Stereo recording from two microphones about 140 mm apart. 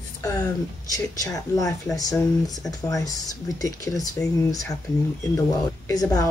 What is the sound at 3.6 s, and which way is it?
Speech, 25° left (ahead or behind).